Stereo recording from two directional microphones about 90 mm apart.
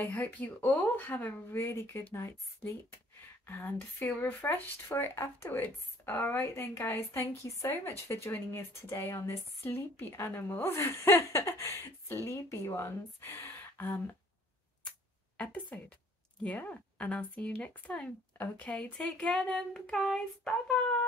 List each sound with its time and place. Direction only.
0.1 s a woman's voice: 15° left (ahead or behind)
14.9 s music: 15° left (ahead or behind)
16.4 s speech: 15° left (ahead or behind)